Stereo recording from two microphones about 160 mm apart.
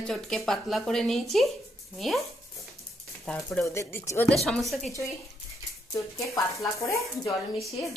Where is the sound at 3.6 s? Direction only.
20° left (ahead or behind).